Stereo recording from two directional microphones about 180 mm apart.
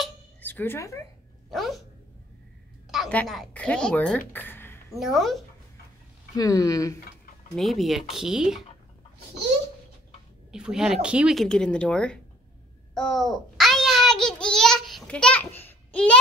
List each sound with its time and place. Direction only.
0.4 s speech: 10° left (ahead or behind)
1.5 s speech: centre (ahead or behind)
2.9 s a woman's voice: 5° left (ahead or behind)
4.9 s speech: centre (ahead or behind)
6.3 s speech: 20° left (ahead or behind)
7.5 s speech: centre (ahead or behind)
10.5 s speech: 5° right (ahead or behind)
12.9 s a sound: centre (ahead or behind)